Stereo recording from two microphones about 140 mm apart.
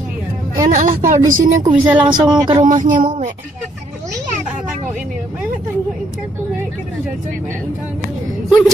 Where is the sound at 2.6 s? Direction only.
70° right (ahead or behind).